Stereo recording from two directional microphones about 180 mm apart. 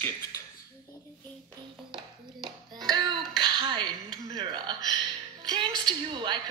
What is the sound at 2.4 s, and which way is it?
Music, centre (ahead or behind).